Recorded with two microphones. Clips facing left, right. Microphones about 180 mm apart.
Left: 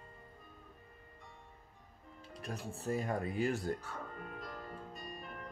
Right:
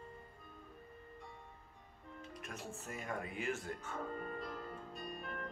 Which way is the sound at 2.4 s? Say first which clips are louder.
Left 9 dB; 35° left (ahead or behind).